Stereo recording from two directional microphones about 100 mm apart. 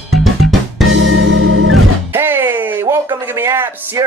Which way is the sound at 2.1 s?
20° right (ahead or behind).